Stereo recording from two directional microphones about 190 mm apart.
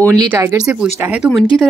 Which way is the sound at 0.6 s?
5° right (ahead or behind).